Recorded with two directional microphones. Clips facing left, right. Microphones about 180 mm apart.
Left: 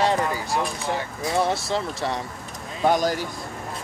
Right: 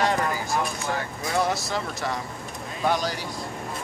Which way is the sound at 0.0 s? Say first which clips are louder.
Left 2 dB; 30° left (ahead or behind).